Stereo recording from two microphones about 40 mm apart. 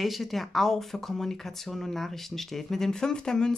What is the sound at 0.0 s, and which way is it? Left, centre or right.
Speech, centre.